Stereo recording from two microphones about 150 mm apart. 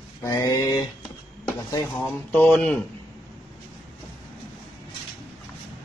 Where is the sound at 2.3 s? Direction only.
5° left (ahead or behind).